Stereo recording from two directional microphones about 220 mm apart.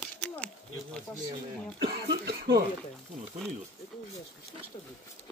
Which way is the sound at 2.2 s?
50° right (ahead or behind).